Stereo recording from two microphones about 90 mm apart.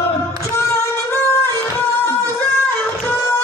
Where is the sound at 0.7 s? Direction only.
30° left (ahead or behind).